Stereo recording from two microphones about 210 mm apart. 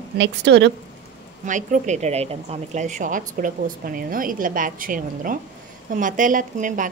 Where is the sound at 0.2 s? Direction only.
55° right (ahead or behind).